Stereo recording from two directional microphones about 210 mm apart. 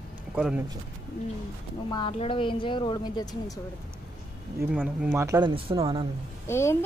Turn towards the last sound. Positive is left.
turn(degrees=10)  # may be behind; listen again after turning